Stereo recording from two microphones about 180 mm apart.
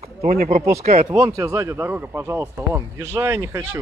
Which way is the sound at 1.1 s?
15° right (ahead or behind).